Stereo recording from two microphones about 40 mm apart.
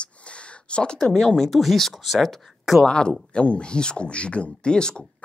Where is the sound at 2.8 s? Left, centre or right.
Left.